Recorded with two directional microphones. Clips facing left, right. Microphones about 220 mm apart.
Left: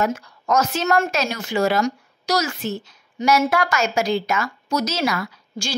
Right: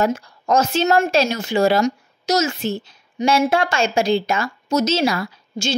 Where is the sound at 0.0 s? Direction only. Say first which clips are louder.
Right 3 dB; 30° right (ahead or behind).